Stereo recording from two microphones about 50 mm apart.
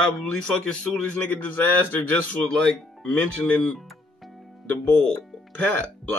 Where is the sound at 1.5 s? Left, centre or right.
Left.